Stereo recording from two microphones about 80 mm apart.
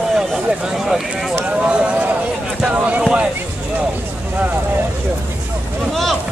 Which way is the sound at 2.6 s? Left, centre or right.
Centre.